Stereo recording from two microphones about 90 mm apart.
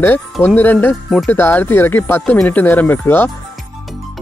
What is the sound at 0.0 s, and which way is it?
Speech, 25° left (ahead or behind).